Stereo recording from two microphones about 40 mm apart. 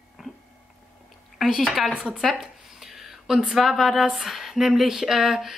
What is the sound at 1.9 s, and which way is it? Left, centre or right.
Speech, right.